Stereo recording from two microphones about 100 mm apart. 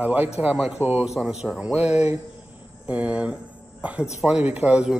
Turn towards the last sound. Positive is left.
turn(degrees=-10)  # may be behind; listen again after turning